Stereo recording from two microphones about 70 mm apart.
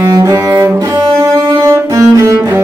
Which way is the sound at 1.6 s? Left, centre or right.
Right.